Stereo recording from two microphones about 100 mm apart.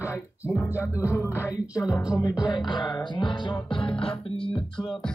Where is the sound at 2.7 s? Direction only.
50° left (ahead or behind).